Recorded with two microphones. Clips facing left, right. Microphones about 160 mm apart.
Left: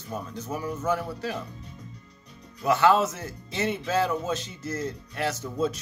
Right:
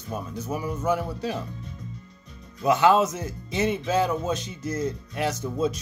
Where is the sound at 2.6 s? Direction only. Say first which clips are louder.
Right 2 dB; 15° right (ahead or behind).